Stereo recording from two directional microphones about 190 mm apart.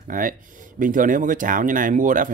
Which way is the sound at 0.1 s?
45° right (ahead or behind).